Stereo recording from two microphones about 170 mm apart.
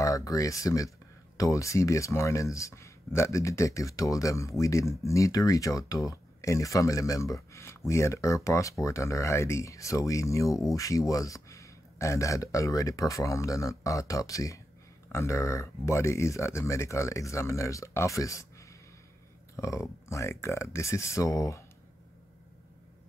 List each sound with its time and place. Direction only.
0.0 s speech: 20° left (ahead or behind)